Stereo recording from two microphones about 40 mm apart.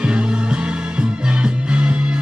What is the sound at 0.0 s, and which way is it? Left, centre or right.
Music, right.